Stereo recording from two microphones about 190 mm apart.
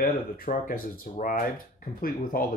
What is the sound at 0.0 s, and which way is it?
Speech, 45° left (ahead or behind).